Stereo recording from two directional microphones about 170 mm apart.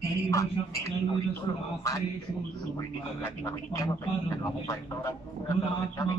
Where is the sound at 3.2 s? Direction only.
15° left (ahead or behind).